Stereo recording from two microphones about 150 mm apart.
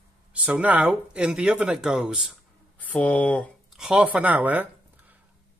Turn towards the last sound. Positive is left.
turn(degrees=-10)  # may be behind; listen again after turning